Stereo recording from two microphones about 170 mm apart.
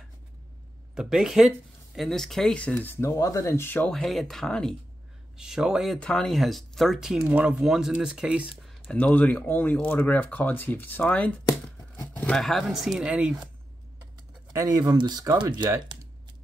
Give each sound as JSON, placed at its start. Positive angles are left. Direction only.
{"t": 0.9, "sound": "speech", "side_deg": -5}
{"t": 8.8, "sound": "speech", "side_deg": 10}
{"t": 14.5, "sound": "speech", "side_deg": -20}